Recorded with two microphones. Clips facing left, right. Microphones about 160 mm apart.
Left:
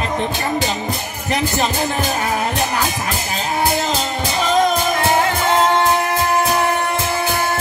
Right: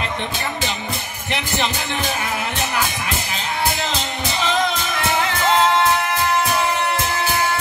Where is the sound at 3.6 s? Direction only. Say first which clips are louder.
Left 4 dB; 40° left (ahead or behind).